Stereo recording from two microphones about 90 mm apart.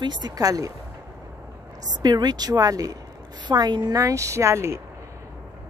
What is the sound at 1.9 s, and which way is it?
Speech, 50° right (ahead or behind).